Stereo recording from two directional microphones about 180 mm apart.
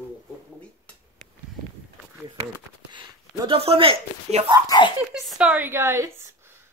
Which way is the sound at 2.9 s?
30° right (ahead or behind).